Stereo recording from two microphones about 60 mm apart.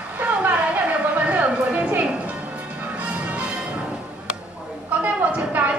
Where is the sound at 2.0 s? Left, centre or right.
Centre.